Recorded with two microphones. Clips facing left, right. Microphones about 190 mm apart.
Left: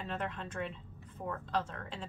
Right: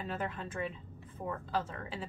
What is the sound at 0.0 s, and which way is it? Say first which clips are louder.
Speech: right 1 dB; 5° right (ahead or behind).